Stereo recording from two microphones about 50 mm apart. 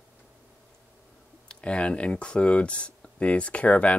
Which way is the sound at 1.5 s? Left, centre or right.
Left.